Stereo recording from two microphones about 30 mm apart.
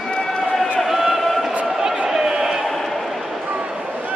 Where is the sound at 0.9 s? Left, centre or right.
Centre.